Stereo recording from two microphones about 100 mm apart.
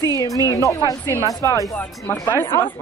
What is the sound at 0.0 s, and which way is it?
A woman's voice, 35° left (ahead or behind).